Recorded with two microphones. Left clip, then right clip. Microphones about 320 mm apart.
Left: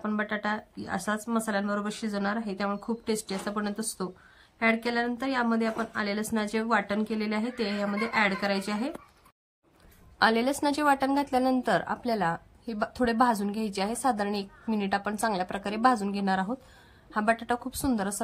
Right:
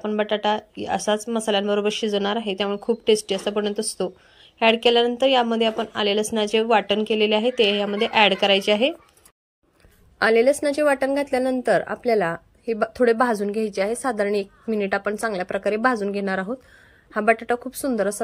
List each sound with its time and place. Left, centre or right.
0.0 s speech: centre
10.1 s a woman's voice: centre